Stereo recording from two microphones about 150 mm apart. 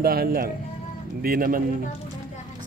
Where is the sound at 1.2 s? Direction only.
75° right (ahead or behind).